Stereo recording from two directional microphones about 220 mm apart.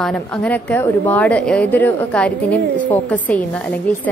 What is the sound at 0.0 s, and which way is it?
A woman's voice, 5° left (ahead or behind).